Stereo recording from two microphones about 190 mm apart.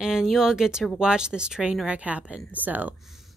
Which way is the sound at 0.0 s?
5° right (ahead or behind).